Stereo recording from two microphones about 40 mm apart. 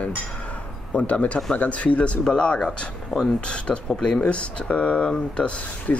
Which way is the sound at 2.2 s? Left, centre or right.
Left.